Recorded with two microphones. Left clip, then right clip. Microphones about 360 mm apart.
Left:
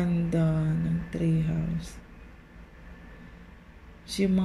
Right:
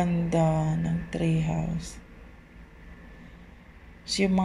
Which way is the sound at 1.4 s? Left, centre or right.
Centre.